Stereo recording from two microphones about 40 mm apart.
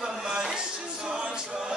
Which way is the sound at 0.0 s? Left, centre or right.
Centre.